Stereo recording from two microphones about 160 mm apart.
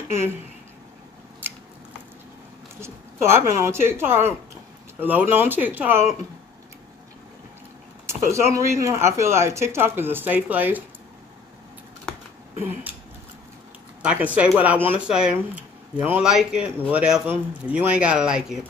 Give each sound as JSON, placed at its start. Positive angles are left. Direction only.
{"t": 2.8, "sound": "speech", "side_deg": -15}
{"t": 8.3, "sound": "speech", "side_deg": -20}
{"t": 14.0, "sound": "speech", "side_deg": -10}